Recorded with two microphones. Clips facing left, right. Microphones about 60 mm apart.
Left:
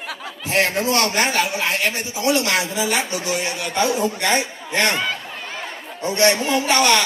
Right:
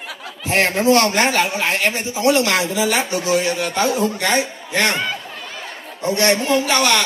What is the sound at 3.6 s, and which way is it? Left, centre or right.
Speech, right.